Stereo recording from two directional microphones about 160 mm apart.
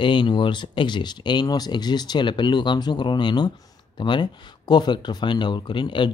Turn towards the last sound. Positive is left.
turn(degrees=30)  # may be behind; listen again after turning